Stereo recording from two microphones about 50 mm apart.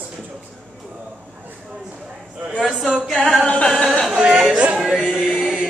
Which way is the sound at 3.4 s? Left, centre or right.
Centre.